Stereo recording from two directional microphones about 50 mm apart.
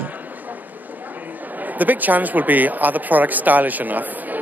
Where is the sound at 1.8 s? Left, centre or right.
Right.